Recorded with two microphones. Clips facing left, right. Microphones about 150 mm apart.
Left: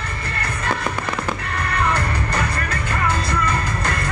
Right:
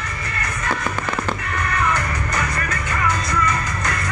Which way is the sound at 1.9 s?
30° left (ahead or behind).